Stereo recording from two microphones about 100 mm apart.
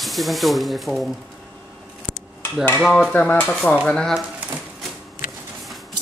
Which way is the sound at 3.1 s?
15° left (ahead or behind).